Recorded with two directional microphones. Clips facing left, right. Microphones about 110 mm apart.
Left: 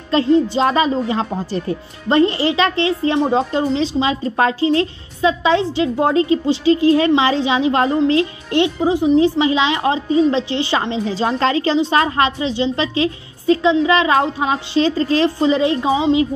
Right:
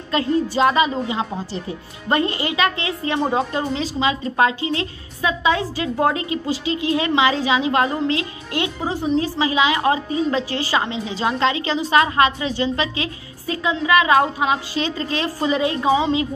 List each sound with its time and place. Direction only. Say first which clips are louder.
0.1 s speech: left 6 dB; 30° left (ahead or behind)
2.0 s a woman's voice: left 6 dB; 30° left (ahead or behind)
8.8 s a woman's voice: left 7 dB; 15° left (ahead or behind)